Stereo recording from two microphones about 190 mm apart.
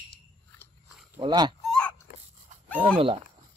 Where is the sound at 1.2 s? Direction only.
20° right (ahead or behind).